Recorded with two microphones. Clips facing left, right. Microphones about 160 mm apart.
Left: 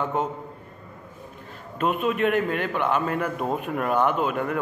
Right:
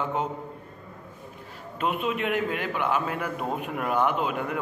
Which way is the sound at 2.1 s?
10° right (ahead or behind).